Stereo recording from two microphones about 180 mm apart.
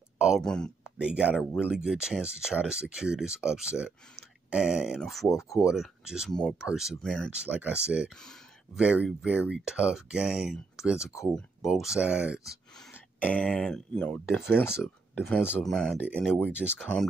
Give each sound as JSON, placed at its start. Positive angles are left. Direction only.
{"t": 0.2, "sound": "speech", "side_deg": 0}
{"t": 5.4, "sound": "speech", "side_deg": 15}
{"t": 5.7, "sound": "speech", "side_deg": -5}
{"t": 7.4, "sound": "speech", "side_deg": -5}
{"t": 12.7, "sound": "speech", "side_deg": 5}
{"t": 16.4, "sound": "speech", "side_deg": -5}